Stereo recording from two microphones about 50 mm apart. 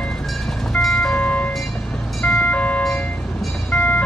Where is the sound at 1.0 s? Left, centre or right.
Left.